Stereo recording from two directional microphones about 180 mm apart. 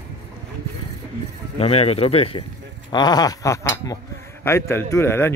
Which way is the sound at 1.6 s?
35° left (ahead or behind).